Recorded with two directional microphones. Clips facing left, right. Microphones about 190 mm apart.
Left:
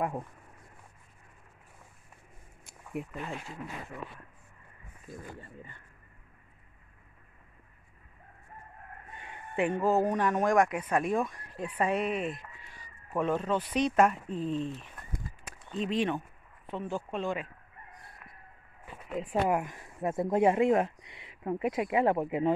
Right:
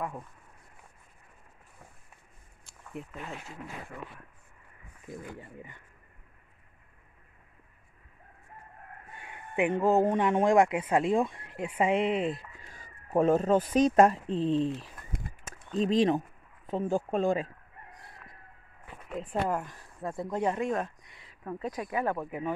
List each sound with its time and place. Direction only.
2.8 s speech: 5° left (ahead or behind)
5.0 s speech: 15° right (ahead or behind)
9.1 s speech: 10° right (ahead or behind); by 12.4 s 25° right (ahead or behind)
12.7 s speech: 45° right (ahead or behind); by 14.7 s 30° right (ahead or behind)
15.8 s speech: 35° right (ahead or behind)
19.4 s speech: 15° left (ahead or behind)